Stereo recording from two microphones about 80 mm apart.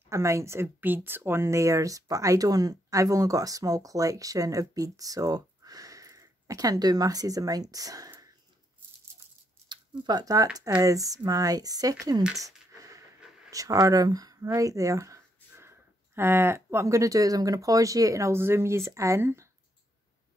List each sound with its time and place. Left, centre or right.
0.1 s speech: right
0.7 s speech: right
9.7 s speech: right
12.4 s a sound: right
13.5 s speech: right
16.8 s speech: right